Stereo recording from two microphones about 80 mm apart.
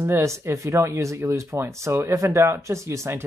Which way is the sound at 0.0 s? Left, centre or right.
Right.